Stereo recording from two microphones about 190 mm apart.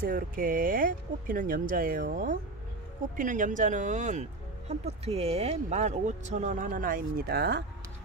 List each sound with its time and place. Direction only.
0.0 s speech: 45° right (ahead or behind)